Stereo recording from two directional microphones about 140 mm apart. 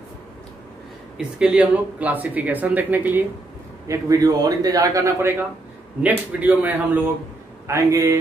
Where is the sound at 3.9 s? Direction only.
25° right (ahead or behind).